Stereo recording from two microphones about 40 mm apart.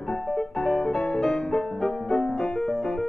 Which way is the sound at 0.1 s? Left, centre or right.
Centre.